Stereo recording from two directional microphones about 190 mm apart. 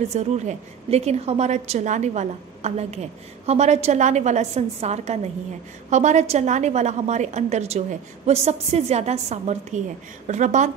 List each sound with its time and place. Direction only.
0.1 s a woman's voice: 35° right (ahead or behind)